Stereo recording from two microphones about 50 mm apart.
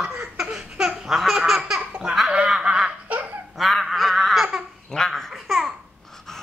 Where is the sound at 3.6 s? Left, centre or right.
Centre.